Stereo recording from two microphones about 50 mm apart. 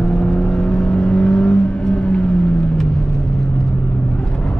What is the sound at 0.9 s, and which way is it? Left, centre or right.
Vehicle, centre.